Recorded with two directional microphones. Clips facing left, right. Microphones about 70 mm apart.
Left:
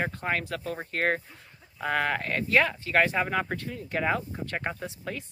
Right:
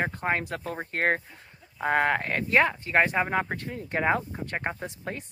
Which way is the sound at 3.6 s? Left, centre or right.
Right.